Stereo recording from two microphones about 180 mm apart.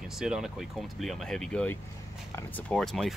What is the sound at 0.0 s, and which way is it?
Speech, 5° right (ahead or behind).